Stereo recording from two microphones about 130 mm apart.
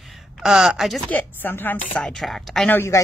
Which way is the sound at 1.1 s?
15° left (ahead or behind).